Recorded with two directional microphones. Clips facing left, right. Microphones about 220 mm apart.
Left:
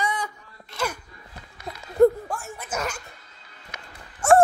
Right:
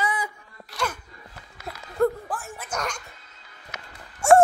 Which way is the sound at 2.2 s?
Centre (ahead or behind).